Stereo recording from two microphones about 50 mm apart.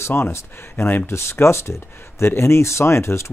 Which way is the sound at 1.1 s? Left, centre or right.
Left.